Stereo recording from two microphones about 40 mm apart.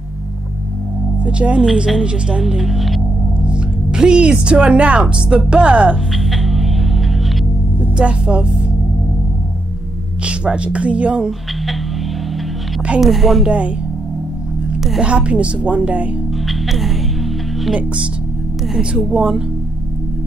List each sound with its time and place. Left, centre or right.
1.2 s speech: right
2.6 s speech: centre
3.4 s speech: right
6.1 s music: centre
8.0 s speech: right
10.2 s speech: right
13.0 s a woman's voice: centre
13.5 s speech: right
15.0 s speech: right
16.4 s music: centre
19.1 s speech: right